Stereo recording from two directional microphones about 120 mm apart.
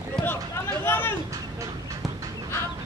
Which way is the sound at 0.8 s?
15° left (ahead or behind).